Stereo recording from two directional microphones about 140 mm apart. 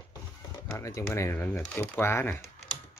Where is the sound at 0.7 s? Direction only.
20° left (ahead or behind).